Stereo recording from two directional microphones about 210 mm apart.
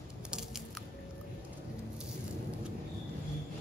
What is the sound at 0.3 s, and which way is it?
Biting, centre (ahead or behind).